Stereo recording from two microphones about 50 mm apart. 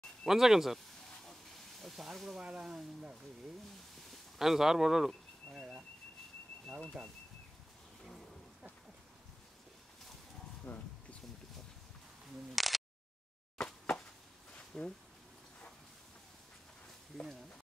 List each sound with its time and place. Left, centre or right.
0.2 s speech: centre
1.8 s a sound: centre
2.4 s speech: centre
4.4 s a sound: centre
7.0 s speech: right
10.7 s speech: left
12.5 s a sound: centre
13.6 s plop: centre
14.7 s speech: centre